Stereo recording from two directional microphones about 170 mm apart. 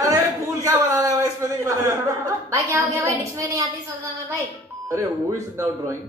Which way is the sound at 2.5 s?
20° right (ahead or behind).